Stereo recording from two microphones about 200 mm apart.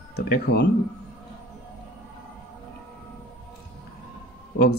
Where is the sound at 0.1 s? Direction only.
55° left (ahead or behind).